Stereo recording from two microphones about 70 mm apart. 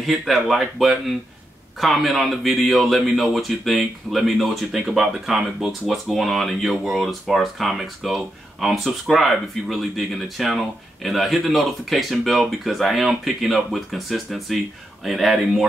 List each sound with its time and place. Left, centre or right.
0.0 s speech: centre